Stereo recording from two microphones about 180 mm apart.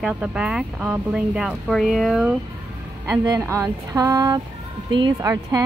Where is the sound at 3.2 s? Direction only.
20° right (ahead or behind).